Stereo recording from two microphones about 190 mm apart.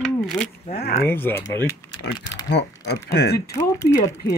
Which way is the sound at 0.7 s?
55° left (ahead or behind).